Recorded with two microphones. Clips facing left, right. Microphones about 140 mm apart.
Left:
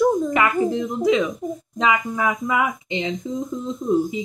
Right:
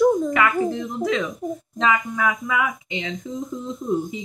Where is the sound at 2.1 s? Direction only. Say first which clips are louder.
Left 2 dB; 30° left (ahead or behind).